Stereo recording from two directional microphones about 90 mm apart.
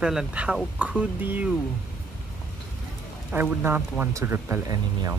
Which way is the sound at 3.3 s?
20° right (ahead or behind).